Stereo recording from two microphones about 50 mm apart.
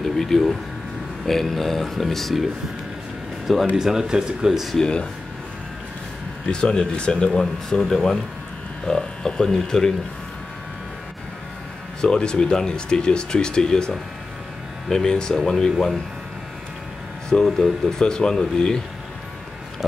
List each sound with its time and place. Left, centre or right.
0.0 s speech: centre
3.7 s speech: centre
4.7 s speech: centre
6.5 s speech: centre
12.0 s speech: centre
17.3 s speech: centre